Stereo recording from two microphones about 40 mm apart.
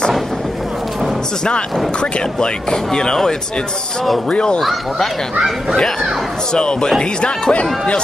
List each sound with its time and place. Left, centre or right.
2.4 s speech: centre
4.3 s speech: left
6.5 s speech: left